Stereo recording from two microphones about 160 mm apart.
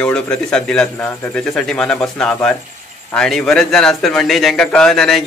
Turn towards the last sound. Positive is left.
turn(degrees=0)  # may be behind; listen again after turning